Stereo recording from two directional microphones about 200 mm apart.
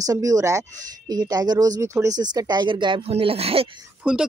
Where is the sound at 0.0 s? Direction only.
15° right (ahead or behind).